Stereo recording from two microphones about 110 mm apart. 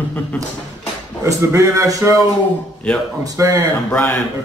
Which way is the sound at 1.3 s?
25° right (ahead or behind).